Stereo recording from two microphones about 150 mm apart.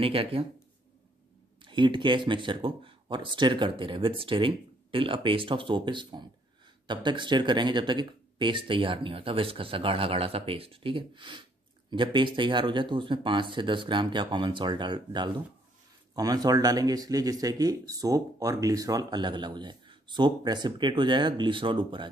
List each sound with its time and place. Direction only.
0.0 s speech: 40° right (ahead or behind)
1.6 s a man's voice: 30° right (ahead or behind)